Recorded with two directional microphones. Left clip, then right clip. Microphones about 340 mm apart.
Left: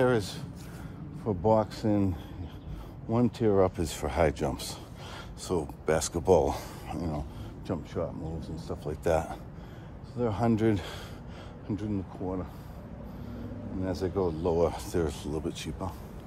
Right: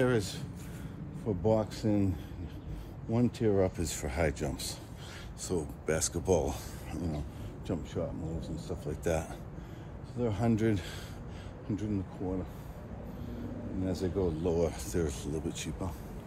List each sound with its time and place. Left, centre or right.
0.0 s speech: centre
13.8 s speech: centre